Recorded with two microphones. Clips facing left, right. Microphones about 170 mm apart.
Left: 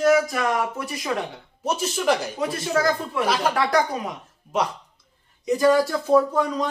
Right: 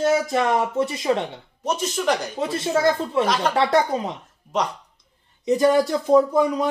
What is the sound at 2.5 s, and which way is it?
Speech, 25° right (ahead or behind).